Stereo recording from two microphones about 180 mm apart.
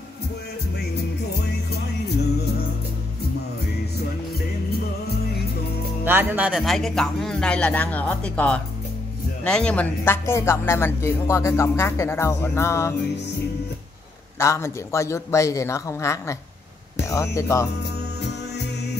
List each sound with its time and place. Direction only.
6.0 s speech: 10° right (ahead or behind); by 12.9 s 15° left (ahead or behind)
14.4 s speech: 15° left (ahead or behind)
18.2 s music: 70° left (ahead or behind)